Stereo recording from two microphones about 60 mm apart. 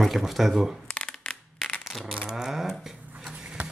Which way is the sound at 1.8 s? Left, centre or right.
Centre.